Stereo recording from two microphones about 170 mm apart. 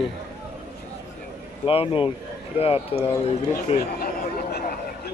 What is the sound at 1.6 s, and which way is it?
Speech, 35° left (ahead or behind).